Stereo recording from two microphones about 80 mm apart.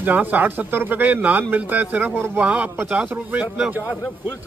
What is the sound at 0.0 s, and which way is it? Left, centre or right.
Speech, right.